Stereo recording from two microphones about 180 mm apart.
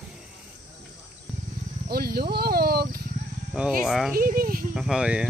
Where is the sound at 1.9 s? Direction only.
60° right (ahead or behind).